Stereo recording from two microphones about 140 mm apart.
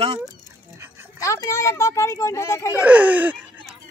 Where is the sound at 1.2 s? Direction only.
25° left (ahead or behind).